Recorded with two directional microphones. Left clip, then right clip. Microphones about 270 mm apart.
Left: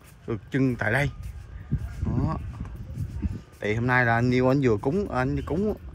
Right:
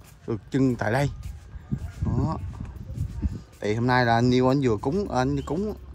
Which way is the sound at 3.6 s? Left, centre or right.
Centre.